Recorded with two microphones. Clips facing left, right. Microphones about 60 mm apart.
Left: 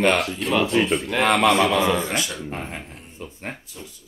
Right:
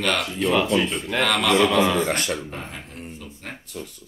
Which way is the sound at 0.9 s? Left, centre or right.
Centre.